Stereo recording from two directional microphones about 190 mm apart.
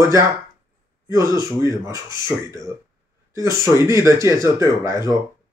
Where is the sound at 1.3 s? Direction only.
15° right (ahead or behind).